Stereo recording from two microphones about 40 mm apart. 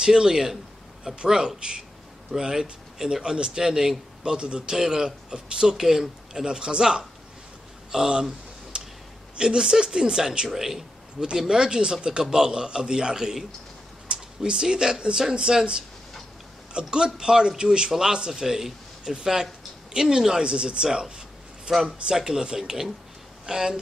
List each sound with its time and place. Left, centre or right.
0.0 s a man's voice: centre
8.7 s a sound: right
9.4 s speech: centre
10.5 s a man's voice: centre